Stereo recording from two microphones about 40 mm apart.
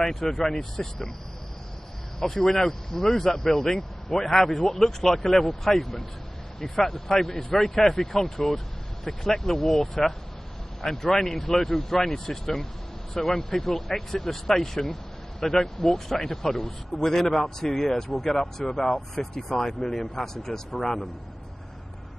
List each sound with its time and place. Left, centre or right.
0.0 s speech: centre
0.6 s speech: centre
2.1 s speech: centre